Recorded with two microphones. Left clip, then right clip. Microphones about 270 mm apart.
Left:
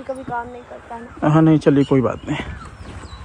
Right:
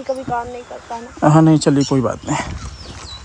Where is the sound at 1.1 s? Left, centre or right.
Centre.